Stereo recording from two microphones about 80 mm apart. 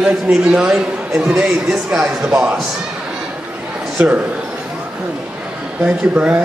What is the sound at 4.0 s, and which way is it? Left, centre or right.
Speech, right.